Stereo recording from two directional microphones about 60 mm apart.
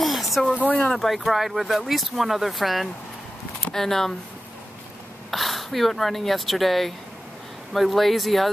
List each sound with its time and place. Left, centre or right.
0.0 s a sound: centre
0.6 s speech: left
0.9 s speech: centre
5.3 s speech: centre